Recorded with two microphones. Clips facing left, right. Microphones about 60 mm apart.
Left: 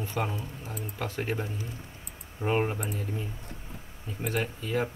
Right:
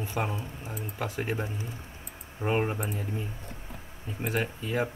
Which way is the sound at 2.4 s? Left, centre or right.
Centre.